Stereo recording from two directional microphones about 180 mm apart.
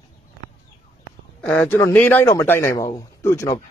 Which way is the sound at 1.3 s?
10° left (ahead or behind).